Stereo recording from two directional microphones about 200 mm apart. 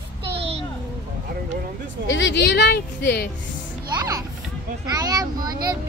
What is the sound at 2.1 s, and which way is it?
Speech, 65° left (ahead or behind).